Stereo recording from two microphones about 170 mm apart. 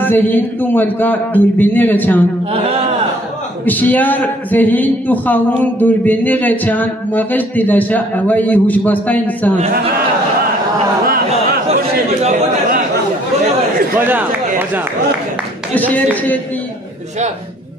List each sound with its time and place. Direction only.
0.0 s a man's voice: 10° left (ahead or behind)
2.5 s speech: 35° right (ahead or behind)
3.6 s a man's voice: 10° left (ahead or behind)
12.2 s speech: 50° right (ahead or behind)
13.9 s speech: 10° right (ahead or behind)
15.7 s a man's voice: 10° left (ahead or behind)